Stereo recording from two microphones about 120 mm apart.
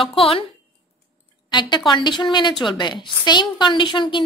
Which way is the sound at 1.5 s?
40° left (ahead or behind).